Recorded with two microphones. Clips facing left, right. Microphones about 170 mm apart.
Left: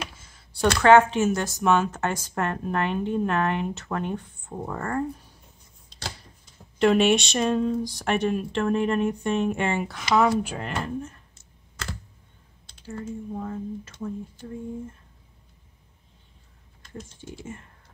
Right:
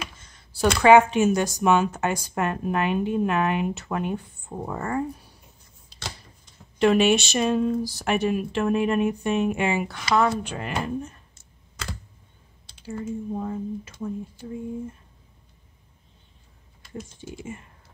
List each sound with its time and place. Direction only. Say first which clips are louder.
0.2 s speech: right 1 dB; 5° left (ahead or behind)
5.9 s a sound: even; 5° right (ahead or behind)
6.8 s speech: right 1 dB; centre (ahead or behind)
10.7 s speech: right 2 dB; 15° right (ahead or behind)
12.8 s speech: right 3 dB; 15° right (ahead or behind)
16.8 s speech: right 3 dB; 5° right (ahead or behind)